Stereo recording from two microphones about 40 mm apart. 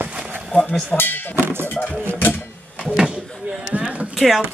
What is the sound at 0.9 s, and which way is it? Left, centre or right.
Speech, left.